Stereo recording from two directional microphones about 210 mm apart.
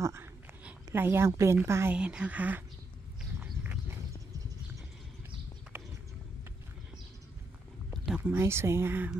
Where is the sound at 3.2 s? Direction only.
5° right (ahead or behind).